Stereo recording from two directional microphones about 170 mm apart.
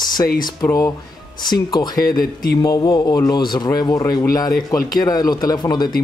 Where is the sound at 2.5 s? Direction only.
20° left (ahead or behind).